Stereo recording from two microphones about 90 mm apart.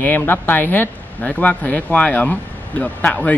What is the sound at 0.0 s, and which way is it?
Speech, 20° left (ahead or behind).